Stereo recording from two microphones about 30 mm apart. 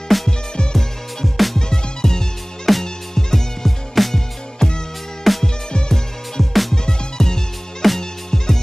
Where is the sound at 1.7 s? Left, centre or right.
Centre.